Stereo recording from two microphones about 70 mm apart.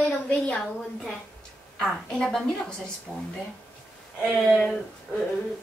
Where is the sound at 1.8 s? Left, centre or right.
Centre.